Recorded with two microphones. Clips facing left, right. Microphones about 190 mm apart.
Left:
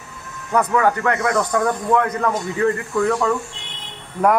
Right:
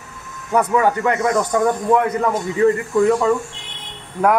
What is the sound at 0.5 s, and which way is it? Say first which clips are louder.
A man's voice: right 1 dB; 5° right (ahead or behind).